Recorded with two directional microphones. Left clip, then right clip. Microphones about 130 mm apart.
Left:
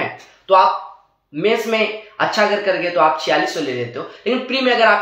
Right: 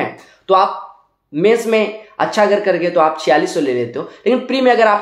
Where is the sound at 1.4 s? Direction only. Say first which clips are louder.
Right 4 dB; 35° right (ahead or behind).